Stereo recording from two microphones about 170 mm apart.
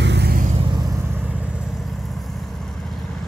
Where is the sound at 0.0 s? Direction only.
80° right.